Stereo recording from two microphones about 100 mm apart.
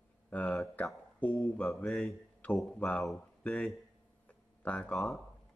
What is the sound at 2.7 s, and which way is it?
Speech, 10° left (ahead or behind).